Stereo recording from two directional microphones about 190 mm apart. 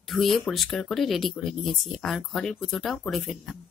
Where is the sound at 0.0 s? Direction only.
Centre (ahead or behind).